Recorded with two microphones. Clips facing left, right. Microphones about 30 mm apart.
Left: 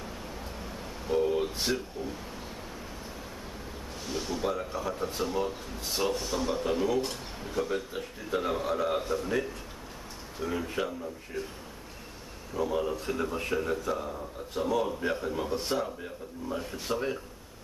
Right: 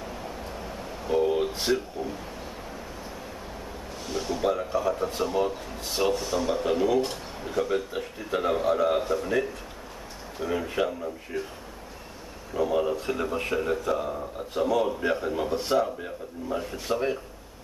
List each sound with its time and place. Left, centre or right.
0.6 s vehicle: centre
1.6 s a man's voice: centre
4.1 s a man's voice: centre
12.5 s a man's voice: centre